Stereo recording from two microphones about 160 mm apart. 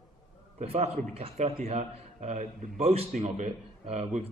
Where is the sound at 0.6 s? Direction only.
40° right (ahead or behind).